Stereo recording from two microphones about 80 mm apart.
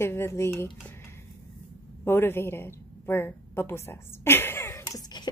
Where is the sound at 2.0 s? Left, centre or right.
Left.